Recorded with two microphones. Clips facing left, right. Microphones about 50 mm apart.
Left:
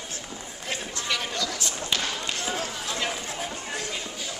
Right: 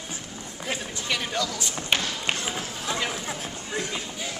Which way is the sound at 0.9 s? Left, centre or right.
Centre.